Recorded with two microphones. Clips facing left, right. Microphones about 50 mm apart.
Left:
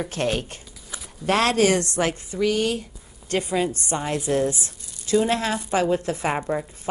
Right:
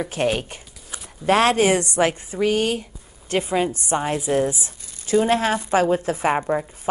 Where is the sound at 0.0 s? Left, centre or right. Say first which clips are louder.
Right 3 dB; centre.